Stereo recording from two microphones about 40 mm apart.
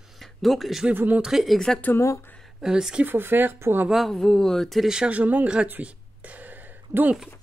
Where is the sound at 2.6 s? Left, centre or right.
Centre.